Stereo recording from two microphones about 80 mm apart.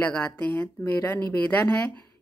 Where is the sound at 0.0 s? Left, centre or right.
Centre.